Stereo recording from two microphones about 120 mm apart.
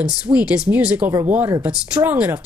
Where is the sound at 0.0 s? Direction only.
10° right (ahead or behind).